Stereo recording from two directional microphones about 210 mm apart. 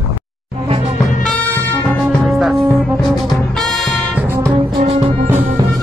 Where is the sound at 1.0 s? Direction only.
10° left (ahead or behind).